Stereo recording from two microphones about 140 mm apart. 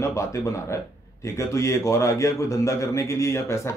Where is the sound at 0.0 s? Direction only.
20° left (ahead or behind).